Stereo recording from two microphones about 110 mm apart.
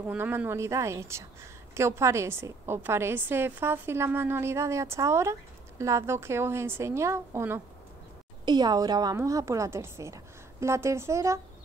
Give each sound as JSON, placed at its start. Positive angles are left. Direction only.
{"t": 0.2, "sound": "a woman's voice", "side_deg": -20}
{"t": 8.5, "sound": "a woman's voice", "side_deg": -40}